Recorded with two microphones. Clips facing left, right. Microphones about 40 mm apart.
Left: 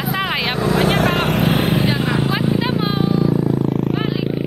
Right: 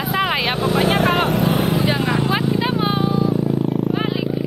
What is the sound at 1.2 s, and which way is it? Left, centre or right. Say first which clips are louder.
Vehicle: left 1 dB; left.